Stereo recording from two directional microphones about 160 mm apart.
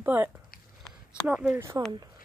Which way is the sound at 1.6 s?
15° right (ahead or behind).